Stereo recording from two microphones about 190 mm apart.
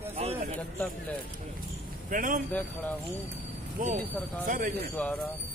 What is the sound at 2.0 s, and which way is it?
Speech, 45° right (ahead or behind).